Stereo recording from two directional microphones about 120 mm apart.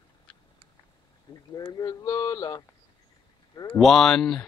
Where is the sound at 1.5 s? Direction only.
30° left (ahead or behind).